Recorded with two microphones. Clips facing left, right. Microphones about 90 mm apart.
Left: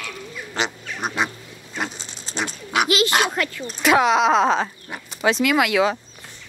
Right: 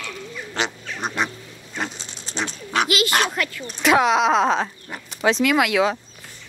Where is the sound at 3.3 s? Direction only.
20° left (ahead or behind).